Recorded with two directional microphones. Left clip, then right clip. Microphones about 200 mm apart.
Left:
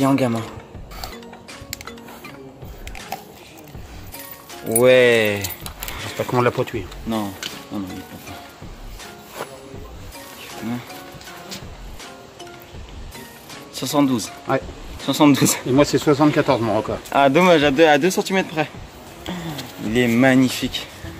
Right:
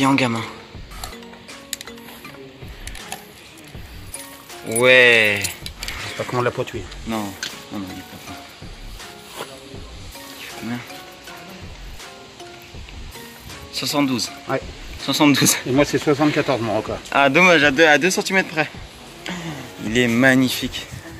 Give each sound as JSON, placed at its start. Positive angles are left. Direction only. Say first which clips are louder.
{"t": 0.0, "sound": "speech", "louder": "right 1 dB", "side_deg": 5}
{"t": 1.1, "sound": "music", "louder": "even", "side_deg": 0}
{"t": 4.7, "sound": "speech", "louder": "right 1 dB", "side_deg": 20}
{"t": 13.7, "sound": "speech", "louder": "left 1 dB", "side_deg": 15}